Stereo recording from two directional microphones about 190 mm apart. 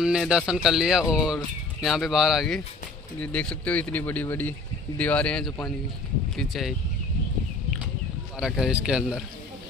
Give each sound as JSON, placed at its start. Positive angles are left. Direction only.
{"t": 0.0, "sound": "speech", "side_deg": -5}
{"t": 8.4, "sound": "speech", "side_deg": -5}